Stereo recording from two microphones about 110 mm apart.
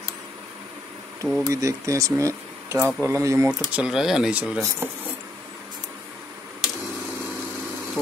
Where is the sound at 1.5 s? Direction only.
30° right (ahead or behind).